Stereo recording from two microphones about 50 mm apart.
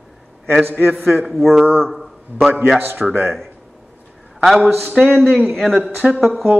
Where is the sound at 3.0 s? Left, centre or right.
Centre.